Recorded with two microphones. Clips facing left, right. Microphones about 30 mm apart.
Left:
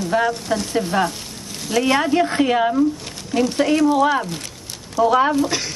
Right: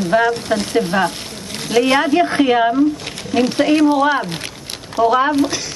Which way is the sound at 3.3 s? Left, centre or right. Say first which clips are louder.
Right 3 dB; right.